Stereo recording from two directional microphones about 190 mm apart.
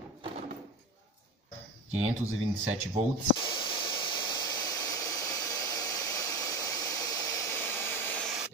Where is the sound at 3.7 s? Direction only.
25° left (ahead or behind).